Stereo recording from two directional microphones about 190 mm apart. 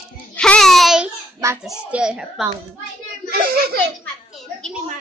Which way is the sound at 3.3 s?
50° right (ahead or behind).